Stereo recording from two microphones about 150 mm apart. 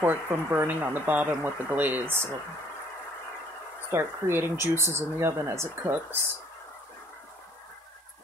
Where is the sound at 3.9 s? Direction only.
15° right (ahead or behind).